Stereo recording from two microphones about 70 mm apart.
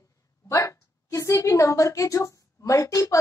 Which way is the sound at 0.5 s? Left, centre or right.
Left.